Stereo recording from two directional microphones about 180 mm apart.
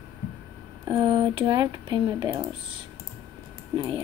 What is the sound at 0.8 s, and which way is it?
Speech, 25° right (ahead or behind).